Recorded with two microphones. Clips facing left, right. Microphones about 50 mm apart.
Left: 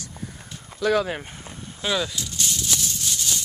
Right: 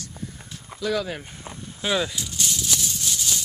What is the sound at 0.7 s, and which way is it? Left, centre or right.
Speech, left.